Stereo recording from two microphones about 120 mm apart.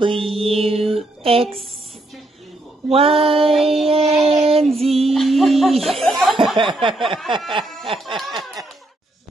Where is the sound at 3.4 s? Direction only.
Centre (ahead or behind).